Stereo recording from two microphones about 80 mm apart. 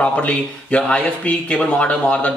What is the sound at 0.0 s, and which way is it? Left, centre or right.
Speech, centre.